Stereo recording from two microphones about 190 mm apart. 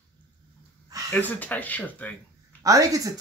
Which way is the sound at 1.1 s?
10° left (ahead or behind).